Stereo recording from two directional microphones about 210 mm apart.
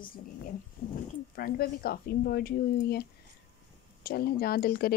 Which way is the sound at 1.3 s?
45° left (ahead or behind).